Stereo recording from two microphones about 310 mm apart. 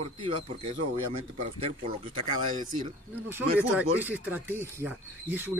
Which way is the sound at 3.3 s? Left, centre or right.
Centre.